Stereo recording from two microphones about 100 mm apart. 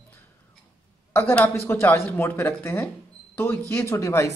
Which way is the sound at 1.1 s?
25° left (ahead or behind).